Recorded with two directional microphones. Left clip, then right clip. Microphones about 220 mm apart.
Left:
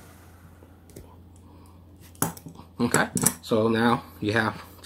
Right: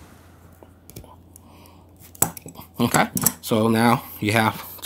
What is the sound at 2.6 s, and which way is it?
Speech, 45° right (ahead or behind).